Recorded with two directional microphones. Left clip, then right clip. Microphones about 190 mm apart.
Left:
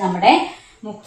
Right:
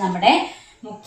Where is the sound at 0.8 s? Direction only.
15° left (ahead or behind).